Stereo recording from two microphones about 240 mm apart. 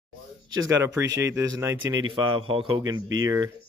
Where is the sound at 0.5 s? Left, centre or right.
Centre.